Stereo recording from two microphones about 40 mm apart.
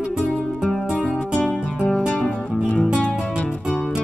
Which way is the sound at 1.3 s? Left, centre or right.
Left.